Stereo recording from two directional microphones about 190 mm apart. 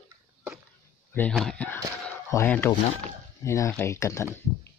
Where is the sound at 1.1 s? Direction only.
5° left (ahead or behind).